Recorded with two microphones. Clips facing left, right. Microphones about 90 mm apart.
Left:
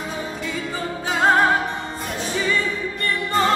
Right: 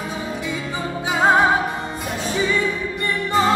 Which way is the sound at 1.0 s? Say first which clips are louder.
Right 1 dB; 10° right (ahead or behind).